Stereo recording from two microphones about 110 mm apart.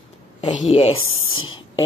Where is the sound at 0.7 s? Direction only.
55° left (ahead or behind).